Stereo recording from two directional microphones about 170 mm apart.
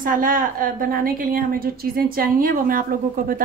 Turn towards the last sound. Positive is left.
turn(degrees=-55)  # may be behind; listen again after turning